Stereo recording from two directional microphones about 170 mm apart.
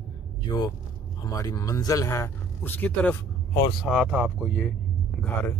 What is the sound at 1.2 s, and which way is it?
Speech, 20° left (ahead or behind).